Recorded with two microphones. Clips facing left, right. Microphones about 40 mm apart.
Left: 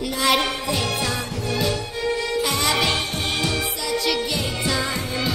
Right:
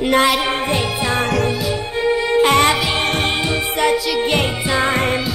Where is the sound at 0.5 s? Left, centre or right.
Right.